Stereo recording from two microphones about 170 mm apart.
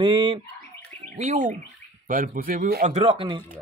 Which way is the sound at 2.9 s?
35° right (ahead or behind).